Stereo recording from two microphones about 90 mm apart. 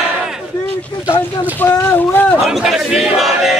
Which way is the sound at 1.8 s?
20° left (ahead or behind).